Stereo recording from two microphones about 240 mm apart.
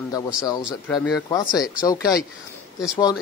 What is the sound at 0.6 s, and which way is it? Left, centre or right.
Speech, centre.